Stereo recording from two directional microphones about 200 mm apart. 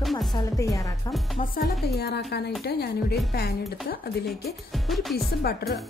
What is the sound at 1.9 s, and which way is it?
A woman's voice, 55° left (ahead or behind).